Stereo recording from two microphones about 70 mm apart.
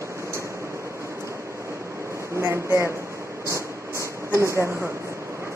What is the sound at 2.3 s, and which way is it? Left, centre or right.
Speech, right.